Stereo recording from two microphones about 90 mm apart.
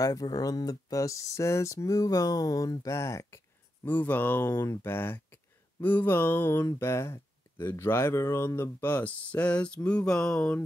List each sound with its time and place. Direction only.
0.0 s speech: 45° left (ahead or behind)
3.8 s speech: 20° left (ahead or behind)
8.5 s a sound: 20° left (ahead or behind)